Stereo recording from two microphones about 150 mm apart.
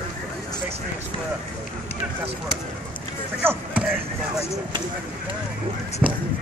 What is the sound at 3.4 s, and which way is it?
Speech, 15° right (ahead or behind).